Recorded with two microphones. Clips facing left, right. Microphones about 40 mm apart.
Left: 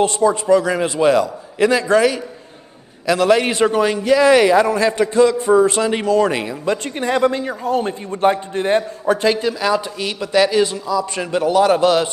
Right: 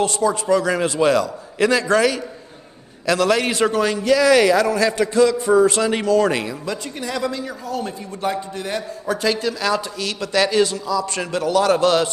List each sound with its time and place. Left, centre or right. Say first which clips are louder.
0.0 s a man's voice: left 4 dB; left
6.8 s a man's voice: left 10 dB; left
9.0 s a man's voice: left 4 dB; left